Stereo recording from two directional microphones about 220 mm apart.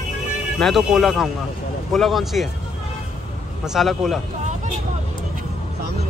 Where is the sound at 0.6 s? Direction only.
Centre (ahead or behind).